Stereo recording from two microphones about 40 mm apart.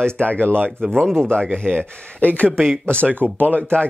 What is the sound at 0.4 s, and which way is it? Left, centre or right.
Speech, right.